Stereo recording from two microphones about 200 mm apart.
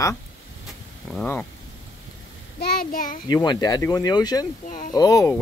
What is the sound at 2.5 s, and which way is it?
Speech, 45° left (ahead or behind).